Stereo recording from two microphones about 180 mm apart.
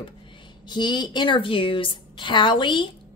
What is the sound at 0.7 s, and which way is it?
A woman's voice, 25° left (ahead or behind).